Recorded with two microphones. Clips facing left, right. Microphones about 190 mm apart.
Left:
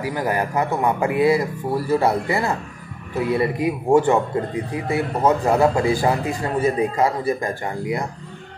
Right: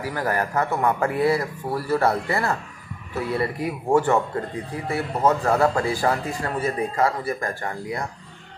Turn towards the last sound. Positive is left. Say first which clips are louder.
# left 5 dB
turn(degrees=20)  # may be behind; listen again after turning